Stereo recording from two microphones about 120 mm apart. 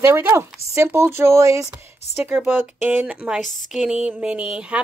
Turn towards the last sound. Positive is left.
turn(degrees=-10)  # may be behind; listen again after turning